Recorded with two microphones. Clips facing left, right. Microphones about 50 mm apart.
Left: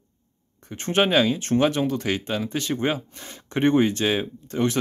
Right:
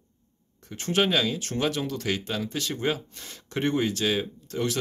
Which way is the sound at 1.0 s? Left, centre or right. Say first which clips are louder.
Left 6 dB; centre.